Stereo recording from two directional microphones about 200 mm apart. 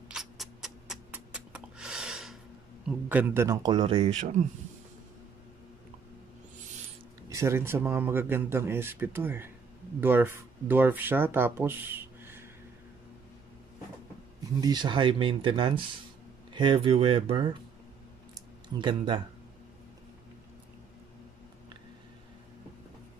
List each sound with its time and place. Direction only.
0.1 s a sound: centre (ahead or behind)
3.1 s speech: 10° right (ahead or behind); by 4.1 s 25° right (ahead or behind)
7.2 s a man's voice: 15° right (ahead or behind)
14.6 s speech: 20° right (ahead or behind)
18.8 s speech: 25° right (ahead or behind)